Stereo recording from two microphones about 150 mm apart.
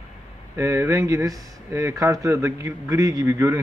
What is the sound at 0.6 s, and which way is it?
Speech, 20° right (ahead or behind).